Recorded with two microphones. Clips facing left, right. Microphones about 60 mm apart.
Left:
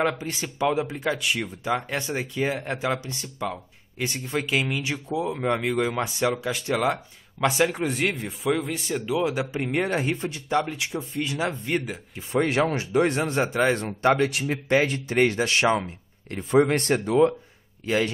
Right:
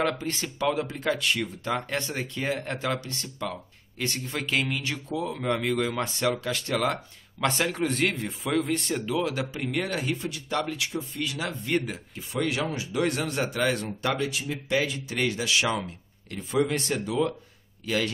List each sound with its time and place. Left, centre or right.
0.0 s speech: centre
9.1 s speech: centre
12.2 s speech: left
12.9 s speech: left
13.8 s speech: left
17.8 s speech: left